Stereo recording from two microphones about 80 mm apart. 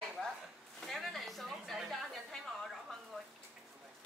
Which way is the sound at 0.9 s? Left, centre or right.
Centre.